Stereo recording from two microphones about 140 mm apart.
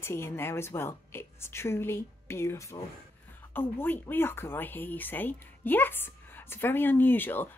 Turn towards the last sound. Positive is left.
turn(degrees=15)  # may be behind; listen again after turning